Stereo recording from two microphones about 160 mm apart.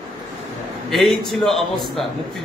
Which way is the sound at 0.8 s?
Centre (ahead or behind).